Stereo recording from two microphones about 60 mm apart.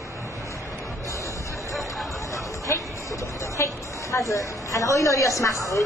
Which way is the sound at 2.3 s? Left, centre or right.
Left.